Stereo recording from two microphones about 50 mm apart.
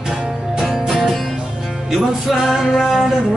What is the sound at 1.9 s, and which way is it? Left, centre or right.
Speech, centre.